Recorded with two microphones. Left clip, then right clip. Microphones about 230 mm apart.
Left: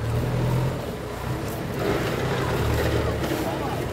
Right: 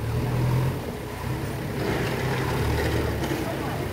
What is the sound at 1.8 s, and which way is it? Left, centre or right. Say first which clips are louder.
Vehicle: left 2 dB; right.